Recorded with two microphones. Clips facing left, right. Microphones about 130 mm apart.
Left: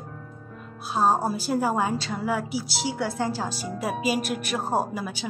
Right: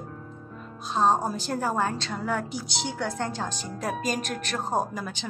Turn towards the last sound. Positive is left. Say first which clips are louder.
# left 2 dB
turn(degrees=10)  # may be behind; listen again after turning